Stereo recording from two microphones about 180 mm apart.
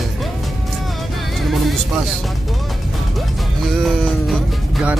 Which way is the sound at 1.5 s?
Centre (ahead or behind).